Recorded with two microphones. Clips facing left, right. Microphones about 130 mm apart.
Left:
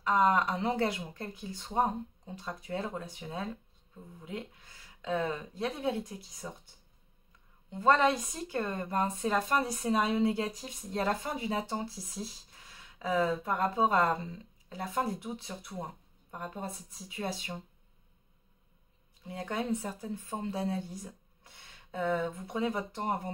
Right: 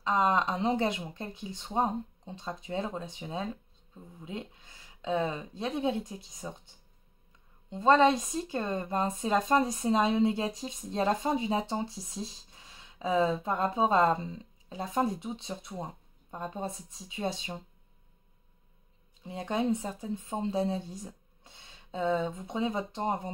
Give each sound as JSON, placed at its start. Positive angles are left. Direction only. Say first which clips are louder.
{"t": 0.0, "sound": "speech", "louder": "even", "side_deg": -20}
{"t": 7.7, "sound": "speech", "louder": "right 3 dB", "side_deg": -20}
{"t": 19.2, "sound": "speech", "louder": "right 4 dB", "side_deg": -25}